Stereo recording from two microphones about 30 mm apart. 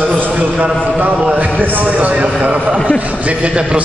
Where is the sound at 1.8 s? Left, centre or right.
Right.